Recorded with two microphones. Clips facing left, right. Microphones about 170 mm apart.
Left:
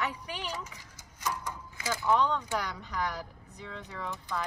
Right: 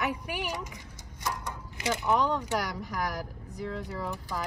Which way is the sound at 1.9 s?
20° right (ahead or behind).